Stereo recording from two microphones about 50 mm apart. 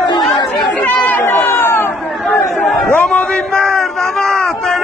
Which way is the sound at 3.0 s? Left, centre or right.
Left.